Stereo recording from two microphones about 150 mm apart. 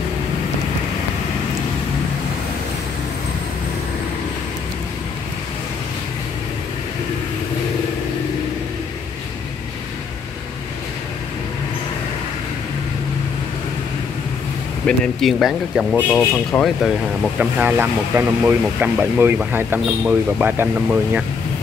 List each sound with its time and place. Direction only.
14.9 s speech: centre (ahead or behind)
16.1 s speech: 10° left (ahead or behind)
17.4 s speech: 10° right (ahead or behind)